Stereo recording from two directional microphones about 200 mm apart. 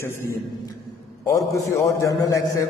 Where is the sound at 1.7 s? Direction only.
15° left (ahead or behind).